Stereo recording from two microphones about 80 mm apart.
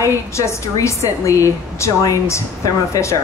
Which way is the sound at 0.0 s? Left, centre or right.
Left.